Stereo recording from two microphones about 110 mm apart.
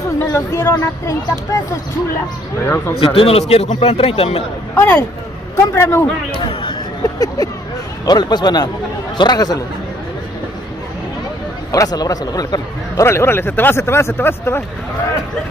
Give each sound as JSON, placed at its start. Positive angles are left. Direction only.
{"t": 0.3, "sound": "speech", "side_deg": 25}
{"t": 2.6, "sound": "speech", "side_deg": 25}
{"t": 3.0, "sound": "a man's voice", "side_deg": 55}
{"t": 4.7, "sound": "speech", "side_deg": 20}
{"t": 6.3, "sound": "speech", "side_deg": 55}
{"t": 7.0, "sound": "a sound", "side_deg": 35}
{"t": 8.0, "sound": "a man's voice", "side_deg": 40}
{"t": 11.7, "sound": "a man's voice", "side_deg": 35}
{"t": 13.0, "sound": "speech", "side_deg": 25}